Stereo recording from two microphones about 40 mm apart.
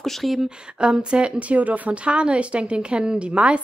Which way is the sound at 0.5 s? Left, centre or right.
Right.